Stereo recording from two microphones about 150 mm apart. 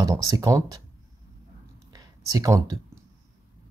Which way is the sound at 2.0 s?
20° right (ahead or behind).